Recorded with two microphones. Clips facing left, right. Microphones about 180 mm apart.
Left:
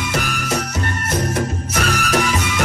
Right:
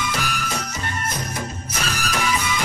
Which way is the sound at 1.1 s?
70° left (ahead or behind).